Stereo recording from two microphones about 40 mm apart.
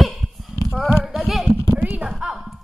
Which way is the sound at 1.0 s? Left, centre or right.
Centre.